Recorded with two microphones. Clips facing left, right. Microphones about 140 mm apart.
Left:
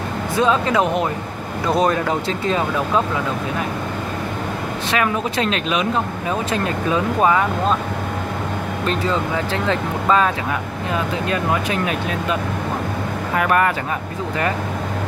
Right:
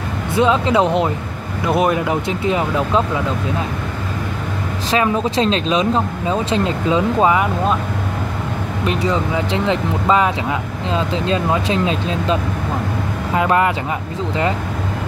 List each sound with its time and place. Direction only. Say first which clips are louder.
0.4 s speech: right 3 dB; 20° right (ahead or behind)
4.9 s speech: right 4 dB; 30° right (ahead or behind)
8.8 s speech: right 2 dB; 15° right (ahead or behind)